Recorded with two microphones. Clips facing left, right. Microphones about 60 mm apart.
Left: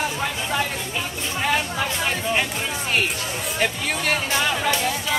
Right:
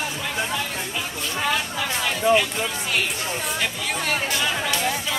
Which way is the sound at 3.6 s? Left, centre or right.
Left.